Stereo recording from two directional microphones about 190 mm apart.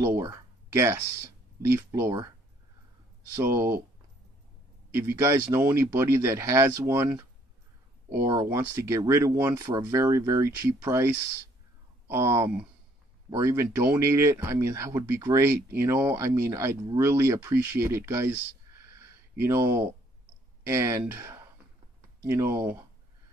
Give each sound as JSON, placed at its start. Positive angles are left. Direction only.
{"t": 0.0, "sound": "a sound", "side_deg": -15}
{"t": 1.6, "sound": "speech", "side_deg": -15}
{"t": 3.3, "sound": "speech", "side_deg": -15}
{"t": 4.9, "sound": "speech", "side_deg": -15}
{"t": 8.5, "sound": "speech", "side_deg": -15}
{"t": 12.1, "sound": "speech", "side_deg": -15}
{"t": 19.3, "sound": "speech", "side_deg": -15}